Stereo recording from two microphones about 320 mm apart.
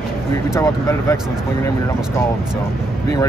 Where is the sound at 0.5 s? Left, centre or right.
Centre.